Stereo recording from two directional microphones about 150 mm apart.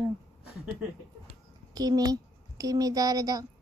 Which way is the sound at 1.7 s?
25° right (ahead or behind).